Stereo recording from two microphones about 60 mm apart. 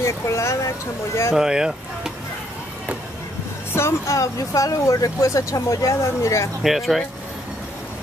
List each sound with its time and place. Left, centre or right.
0.0 s speech: left
1.3 s speech: centre
3.7 s speech: left
4.2 s speech: left
6.6 s speech: centre